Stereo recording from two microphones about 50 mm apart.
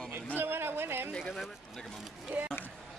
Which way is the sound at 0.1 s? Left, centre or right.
Right.